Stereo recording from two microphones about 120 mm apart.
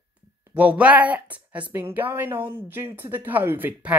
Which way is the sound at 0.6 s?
10° right (ahead or behind).